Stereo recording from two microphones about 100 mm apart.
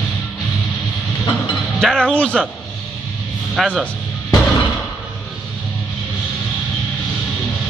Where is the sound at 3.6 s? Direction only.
Centre (ahead or behind).